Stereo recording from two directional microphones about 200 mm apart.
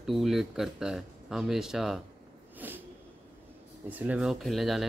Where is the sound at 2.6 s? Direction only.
10° right (ahead or behind).